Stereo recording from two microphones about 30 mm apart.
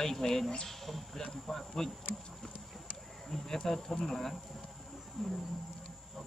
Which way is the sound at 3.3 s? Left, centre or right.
Centre.